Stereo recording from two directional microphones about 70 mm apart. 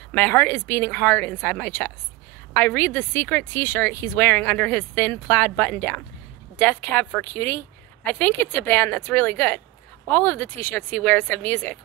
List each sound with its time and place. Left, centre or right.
0.1 s speech: left